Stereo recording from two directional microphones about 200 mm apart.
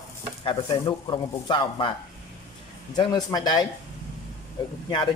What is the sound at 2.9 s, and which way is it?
Speech, 20° left (ahead or behind).